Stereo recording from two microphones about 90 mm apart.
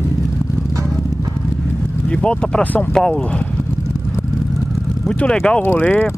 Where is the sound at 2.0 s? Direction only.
15° left (ahead or behind).